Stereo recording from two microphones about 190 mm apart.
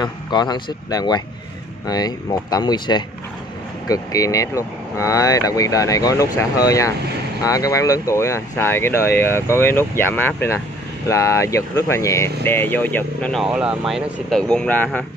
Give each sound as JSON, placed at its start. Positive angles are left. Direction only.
{"t": 0.0, "sound": "speech", "side_deg": 25}